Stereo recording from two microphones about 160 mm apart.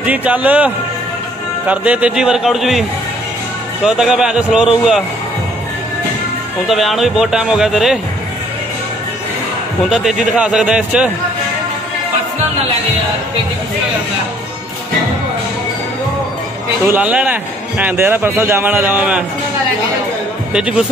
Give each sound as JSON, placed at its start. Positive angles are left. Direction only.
{"t": 0.0, "sound": "a man's voice", "side_deg": -10}
{"t": 1.7, "sound": "speech", "side_deg": -10}
{"t": 3.8, "sound": "speech", "side_deg": -5}
{"t": 6.7, "sound": "speech", "side_deg": 0}
{"t": 9.8, "sound": "speech", "side_deg": -5}
{"t": 16.8, "sound": "a man's voice", "side_deg": -10}
{"t": 20.5, "sound": "speech", "side_deg": -5}